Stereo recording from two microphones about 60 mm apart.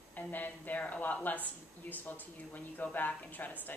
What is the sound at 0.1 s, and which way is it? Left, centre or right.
A woman's voice, left.